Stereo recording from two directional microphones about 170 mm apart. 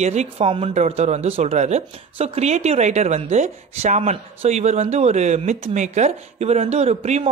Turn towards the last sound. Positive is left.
turn(degrees=-40)  # may be behind; listen again after turning